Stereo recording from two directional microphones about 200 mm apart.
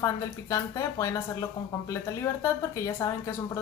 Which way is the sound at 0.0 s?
15° left (ahead or behind).